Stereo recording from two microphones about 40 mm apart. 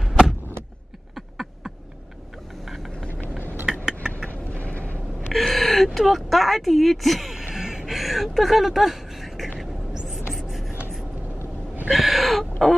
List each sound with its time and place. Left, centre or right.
1.1 s a sound: centre
2.6 s vehicle: centre
3.6 s mechanisms: centre
4.3 s vehicle: left
5.5 s gasp: centre
5.9 s speech: centre
7.3 s a sound: centre
10.0 s writing: centre
11.9 s speech: centre